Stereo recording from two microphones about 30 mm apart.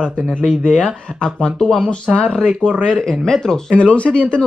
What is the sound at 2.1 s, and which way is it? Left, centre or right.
Speech, centre.